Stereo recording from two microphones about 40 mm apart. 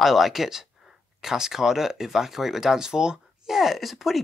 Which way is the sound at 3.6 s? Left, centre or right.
Centre.